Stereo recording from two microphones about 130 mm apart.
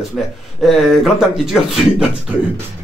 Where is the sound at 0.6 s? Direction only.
Centre (ahead or behind).